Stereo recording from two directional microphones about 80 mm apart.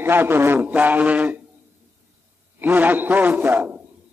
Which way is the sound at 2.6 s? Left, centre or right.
Right.